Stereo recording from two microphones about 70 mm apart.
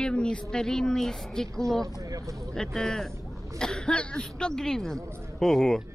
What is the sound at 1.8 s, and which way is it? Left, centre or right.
Speech, right.